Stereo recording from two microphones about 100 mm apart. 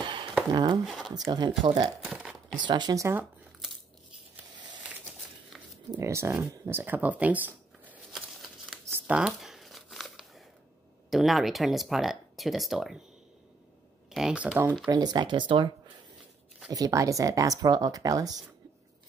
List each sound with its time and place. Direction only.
0.0 s a sound: 50° right (ahead or behind)
0.5 s speech: 45° right (ahead or behind)
0.8 s speech: centre (ahead or behind)
1.1 s speech: 40° right (ahead or behind)
3.0 s speech: 25° right (ahead or behind)
5.9 s speech: 25° right (ahead or behind)
8.1 s a sound: centre (ahead or behind)
8.9 s crumpling: 10° right (ahead or behind)
11.1 s speech: centre (ahead or behind)
14.1 s speech: 10° right (ahead or behind)
14.9 s speech: 40° right (ahead or behind)
16.7 s speech: 35° right (ahead or behind)